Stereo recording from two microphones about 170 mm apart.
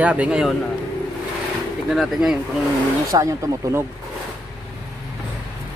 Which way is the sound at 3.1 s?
20° right (ahead or behind).